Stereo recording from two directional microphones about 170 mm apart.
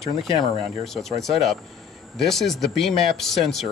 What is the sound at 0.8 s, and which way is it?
Speech, centre (ahead or behind).